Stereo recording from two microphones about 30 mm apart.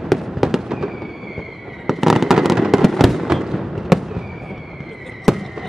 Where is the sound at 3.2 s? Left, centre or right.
Centre.